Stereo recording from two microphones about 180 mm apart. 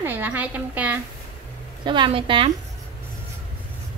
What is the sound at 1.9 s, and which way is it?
Speech, 30° right (ahead or behind).